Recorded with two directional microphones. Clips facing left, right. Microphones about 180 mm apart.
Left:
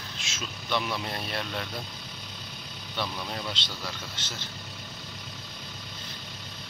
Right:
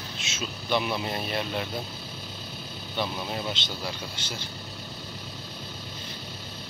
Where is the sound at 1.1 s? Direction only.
10° right (ahead or behind).